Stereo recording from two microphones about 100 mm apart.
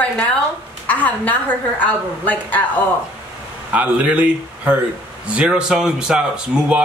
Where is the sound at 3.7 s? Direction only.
15° right (ahead or behind).